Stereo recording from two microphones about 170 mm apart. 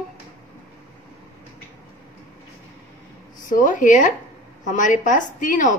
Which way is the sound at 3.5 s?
50° left (ahead or behind).